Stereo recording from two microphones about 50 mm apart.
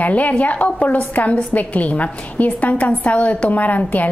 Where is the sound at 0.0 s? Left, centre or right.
Left.